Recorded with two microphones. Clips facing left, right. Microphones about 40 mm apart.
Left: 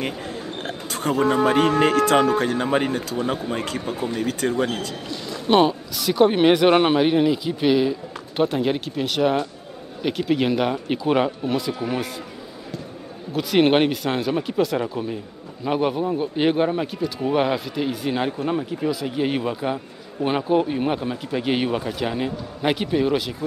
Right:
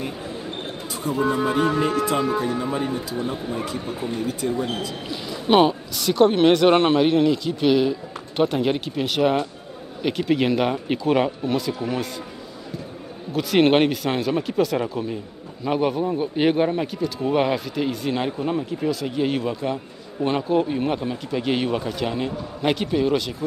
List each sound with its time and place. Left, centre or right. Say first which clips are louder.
0.0 s speech: left 2 dB; left
5.1 s speech: even; centre
13.3 s speech: even; centre